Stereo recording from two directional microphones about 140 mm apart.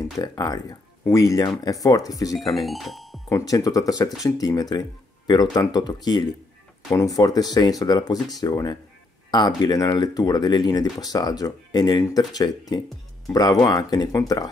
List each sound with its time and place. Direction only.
0.0 s speech: 25° left (ahead or behind)
2.3 s speech: centre (ahead or behind)
3.3 s speech: 25° left (ahead or behind)